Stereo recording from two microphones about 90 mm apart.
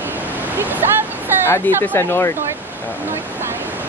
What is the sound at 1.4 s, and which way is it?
Speech, 25° left (ahead or behind).